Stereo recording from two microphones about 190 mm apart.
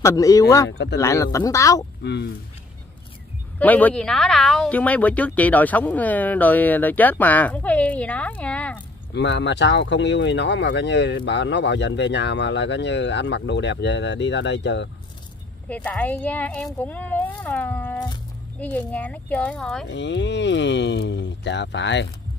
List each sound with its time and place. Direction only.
0.0 s speech: 15° left (ahead or behind)
0.7 s speech: 65° left (ahead or behind)
0.9 s speech: 15° left (ahead or behind)
3.5 s speech: 10° left (ahead or behind)
9.1 s speech: 65° left (ahead or behind)
15.7 s speech: 5° left (ahead or behind)
19.9 s speech: 70° left (ahead or behind)